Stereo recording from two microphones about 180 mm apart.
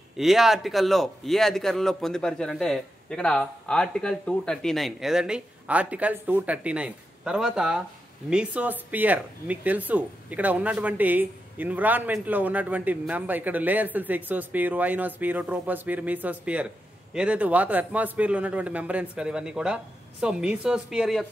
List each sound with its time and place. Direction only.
0.2 s speech: centre (ahead or behind)